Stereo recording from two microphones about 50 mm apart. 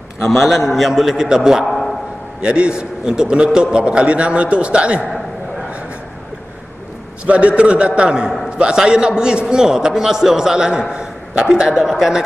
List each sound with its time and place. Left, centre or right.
0.4 s a man's voice: centre
1.7 s a sound: centre
2.4 s a man's voice: right
7.2 s a man's voice: right; by 12.2 s centre